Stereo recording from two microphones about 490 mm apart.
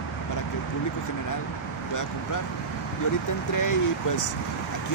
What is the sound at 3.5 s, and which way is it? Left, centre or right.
Speech, left.